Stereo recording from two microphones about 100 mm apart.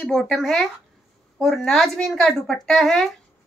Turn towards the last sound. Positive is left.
turn(degrees=5)  # may be behind; listen again after turning